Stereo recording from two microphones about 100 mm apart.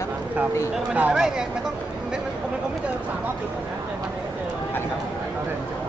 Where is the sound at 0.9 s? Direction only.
15° right (ahead or behind).